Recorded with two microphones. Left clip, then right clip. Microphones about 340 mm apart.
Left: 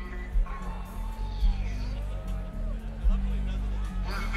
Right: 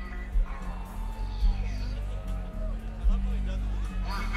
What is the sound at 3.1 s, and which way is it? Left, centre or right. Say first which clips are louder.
Music: left 1 dB; right.